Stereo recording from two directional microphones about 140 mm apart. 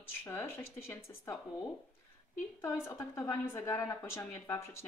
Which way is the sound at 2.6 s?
20° left (ahead or behind).